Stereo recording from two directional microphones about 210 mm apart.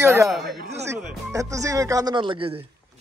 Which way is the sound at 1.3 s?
15° right (ahead or behind).